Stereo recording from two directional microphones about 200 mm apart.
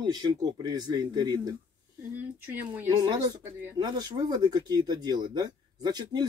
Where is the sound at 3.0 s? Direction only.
20° right (ahead or behind).